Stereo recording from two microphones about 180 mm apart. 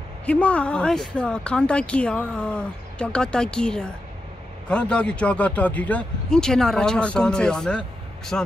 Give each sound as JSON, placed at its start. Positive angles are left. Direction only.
{"t": 0.3, "sound": "speech", "side_deg": 5}